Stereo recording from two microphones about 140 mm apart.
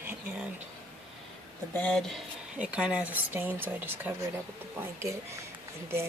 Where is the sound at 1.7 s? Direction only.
5° left (ahead or behind).